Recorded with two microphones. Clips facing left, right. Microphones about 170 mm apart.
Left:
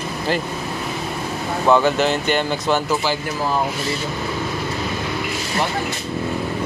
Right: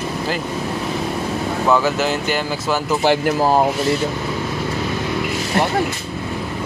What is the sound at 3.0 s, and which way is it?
Speech, 60° right (ahead or behind).